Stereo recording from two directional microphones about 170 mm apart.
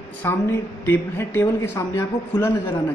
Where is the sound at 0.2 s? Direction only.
15° left (ahead or behind).